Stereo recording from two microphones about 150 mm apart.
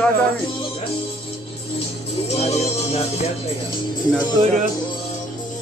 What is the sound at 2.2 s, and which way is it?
Music, 45° left (ahead or behind).